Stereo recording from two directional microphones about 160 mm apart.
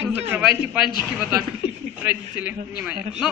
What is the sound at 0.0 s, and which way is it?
Speech, 10° right (ahead or behind).